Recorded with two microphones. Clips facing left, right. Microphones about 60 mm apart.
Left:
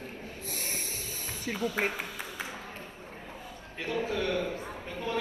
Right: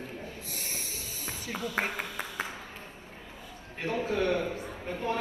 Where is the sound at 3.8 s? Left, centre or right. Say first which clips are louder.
Right 2 dB; right.